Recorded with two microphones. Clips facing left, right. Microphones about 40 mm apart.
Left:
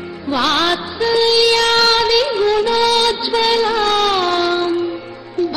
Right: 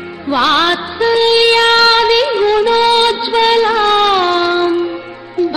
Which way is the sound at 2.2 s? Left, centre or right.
Right.